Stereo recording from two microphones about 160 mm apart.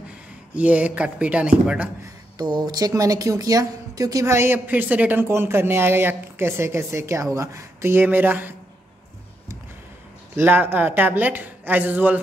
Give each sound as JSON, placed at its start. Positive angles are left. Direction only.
{"t": 0.6, "sound": "speech", "side_deg": -10}
{"t": 2.3, "sound": "speech", "side_deg": -25}
{"t": 10.3, "sound": "speech", "side_deg": -15}